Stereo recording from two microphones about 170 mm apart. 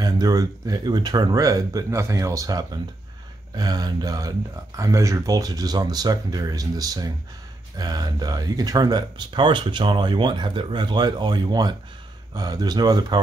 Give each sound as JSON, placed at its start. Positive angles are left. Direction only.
{"t": 0.0, "sound": "speech", "side_deg": -20}